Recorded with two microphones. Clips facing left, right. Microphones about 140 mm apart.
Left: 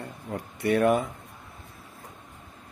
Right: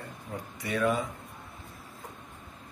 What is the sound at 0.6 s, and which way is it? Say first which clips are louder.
Speech: left 6 dB; 60° left (ahead or behind).